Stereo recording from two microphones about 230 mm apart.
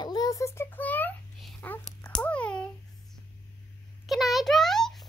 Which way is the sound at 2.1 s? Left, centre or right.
Centre.